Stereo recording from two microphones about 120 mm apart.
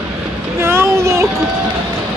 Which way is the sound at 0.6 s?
25° right (ahead or behind).